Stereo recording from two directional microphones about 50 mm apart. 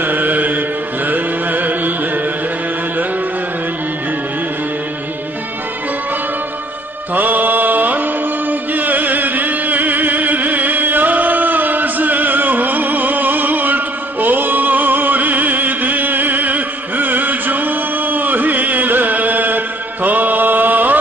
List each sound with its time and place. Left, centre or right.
0.0 s mantra: right
7.2 s music: right